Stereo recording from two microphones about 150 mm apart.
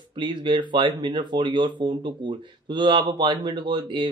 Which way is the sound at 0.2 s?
30° right (ahead or behind).